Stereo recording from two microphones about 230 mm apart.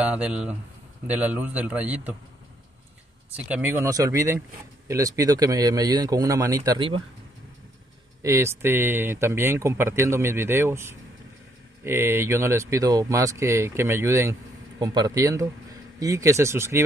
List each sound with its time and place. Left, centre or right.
0.0 s speech: centre
3.4 s speech: centre
8.2 s speech: centre